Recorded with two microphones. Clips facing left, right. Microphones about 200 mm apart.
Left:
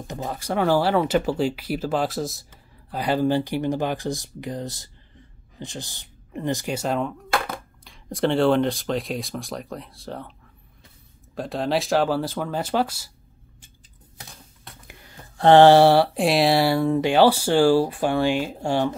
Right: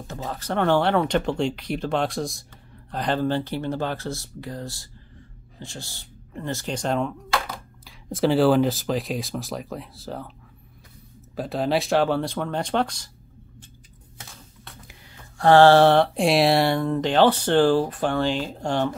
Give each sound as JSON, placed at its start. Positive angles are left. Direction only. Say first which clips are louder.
{"t": 0.0, "sound": "speech", "louder": "left 2 dB", "side_deg": 15}
{"t": 7.2, "sound": "a sound", "louder": "left 2 dB", "side_deg": 55}
{"t": 7.8, "sound": "speech", "louder": "right 1 dB", "side_deg": 0}
{"t": 11.3, "sound": "speech", "louder": "right 1 dB", "side_deg": 0}
{"t": 15.3, "sound": "speech", "louder": "left 2 dB", "side_deg": 20}